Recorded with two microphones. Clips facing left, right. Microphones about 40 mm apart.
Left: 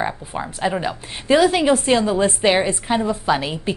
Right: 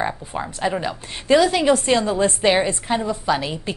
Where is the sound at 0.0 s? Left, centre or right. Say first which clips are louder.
Even; centre.